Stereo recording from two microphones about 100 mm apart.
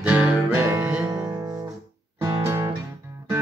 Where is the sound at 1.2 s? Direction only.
30° right (ahead or behind).